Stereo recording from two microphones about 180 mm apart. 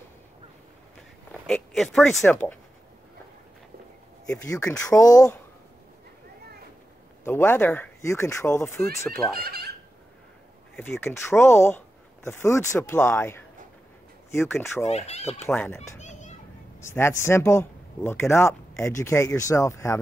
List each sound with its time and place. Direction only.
1.5 s speech: centre (ahead or behind)
4.3 s speech: 15° left (ahead or behind)
7.2 s speech: 15° left (ahead or behind)
9.1 s speech: centre (ahead or behind)
9.4 s speech: 60° right (ahead or behind)
10.8 s speech: 10° left (ahead or behind)
14.9 s speech: 35° left (ahead or behind)
15.3 s speech: 10° left (ahead or behind)
16.0 s children playing: 40° left (ahead or behind)
16.8 s speech: 15° left (ahead or behind)